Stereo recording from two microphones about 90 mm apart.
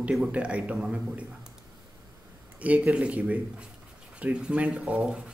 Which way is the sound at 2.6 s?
15° right (ahead or behind).